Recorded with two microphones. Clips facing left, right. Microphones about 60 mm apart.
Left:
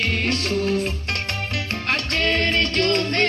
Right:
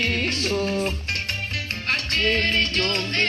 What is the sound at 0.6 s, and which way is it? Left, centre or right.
Music, right.